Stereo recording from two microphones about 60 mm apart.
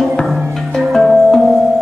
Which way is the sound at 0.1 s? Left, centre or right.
Centre.